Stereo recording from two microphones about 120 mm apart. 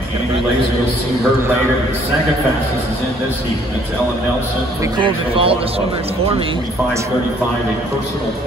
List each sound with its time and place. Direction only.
4.9 s speech: 45° right (ahead or behind)